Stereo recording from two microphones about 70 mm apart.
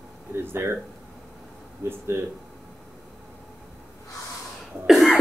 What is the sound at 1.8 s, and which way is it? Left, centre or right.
Speech, right.